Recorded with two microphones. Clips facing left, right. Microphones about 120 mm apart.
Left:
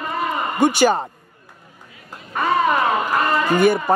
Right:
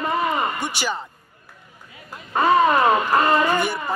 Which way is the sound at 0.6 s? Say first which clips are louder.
Left 11 dB; 50° left (ahead or behind).